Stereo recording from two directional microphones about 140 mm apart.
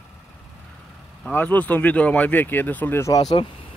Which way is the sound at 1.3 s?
10° left (ahead or behind).